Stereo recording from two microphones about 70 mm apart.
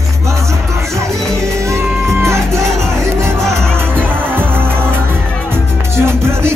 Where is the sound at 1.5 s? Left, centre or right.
Right.